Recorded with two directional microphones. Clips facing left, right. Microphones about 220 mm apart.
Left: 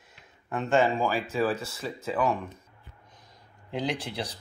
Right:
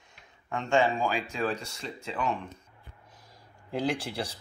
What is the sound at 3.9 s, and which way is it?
Speech, 30° right (ahead or behind).